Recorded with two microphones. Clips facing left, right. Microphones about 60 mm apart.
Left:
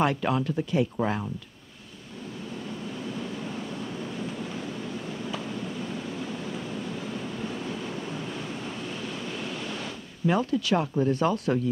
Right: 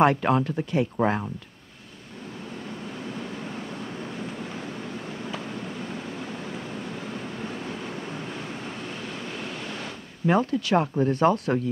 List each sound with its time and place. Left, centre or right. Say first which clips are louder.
0.0 s speech: right 5 dB; right
3.1 s waves: even; right